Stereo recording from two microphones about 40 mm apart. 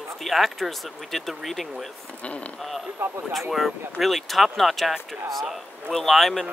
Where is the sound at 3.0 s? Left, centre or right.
Right.